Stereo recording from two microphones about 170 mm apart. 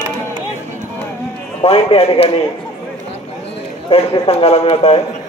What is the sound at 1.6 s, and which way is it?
Speech, 35° left (ahead or behind).